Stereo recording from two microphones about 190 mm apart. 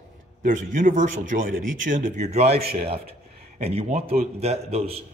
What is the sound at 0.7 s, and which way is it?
A man's voice, 45° right (ahead or behind).